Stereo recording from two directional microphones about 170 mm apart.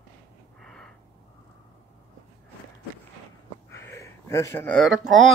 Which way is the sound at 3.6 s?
15° left (ahead or behind).